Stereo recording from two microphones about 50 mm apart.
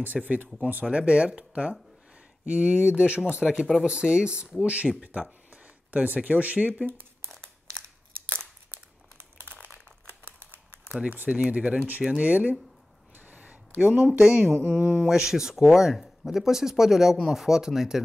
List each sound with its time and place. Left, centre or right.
0.0 s speech: right
0.8 s speech: right
10.0 s crumpling: right
11.0 s speech: right
12.2 s speech: right
13.3 s a sound: right
13.7 s speech: centre
14.7 s speech: right
15.0 s speech: centre